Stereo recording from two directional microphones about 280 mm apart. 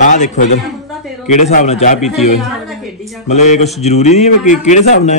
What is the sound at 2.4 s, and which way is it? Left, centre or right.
Speech, centre.